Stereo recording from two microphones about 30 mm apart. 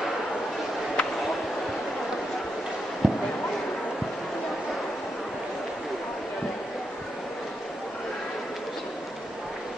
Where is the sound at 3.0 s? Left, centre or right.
Centre.